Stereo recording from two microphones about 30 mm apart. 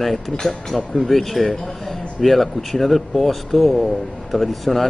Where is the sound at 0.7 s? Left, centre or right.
Centre.